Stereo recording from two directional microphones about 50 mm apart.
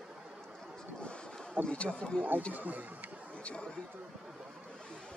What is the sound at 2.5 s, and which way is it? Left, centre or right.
Speech, right.